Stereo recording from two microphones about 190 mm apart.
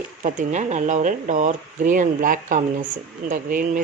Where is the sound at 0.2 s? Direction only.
40° right (ahead or behind).